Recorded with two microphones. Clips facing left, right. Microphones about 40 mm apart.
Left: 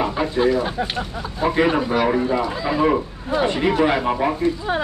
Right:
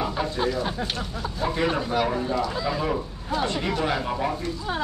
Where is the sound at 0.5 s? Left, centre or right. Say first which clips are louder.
Left 6 dB; left.